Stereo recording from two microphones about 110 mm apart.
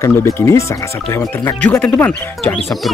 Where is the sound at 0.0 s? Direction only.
25° left (ahead or behind).